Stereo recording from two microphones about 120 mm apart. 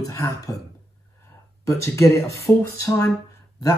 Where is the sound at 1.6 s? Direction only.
25° left (ahead or behind).